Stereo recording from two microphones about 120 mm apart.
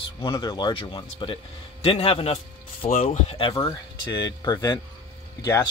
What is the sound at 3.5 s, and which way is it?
Speech, 35° left (ahead or behind).